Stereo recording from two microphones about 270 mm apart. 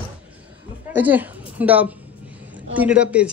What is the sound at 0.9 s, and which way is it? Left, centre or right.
A woman's voice, centre.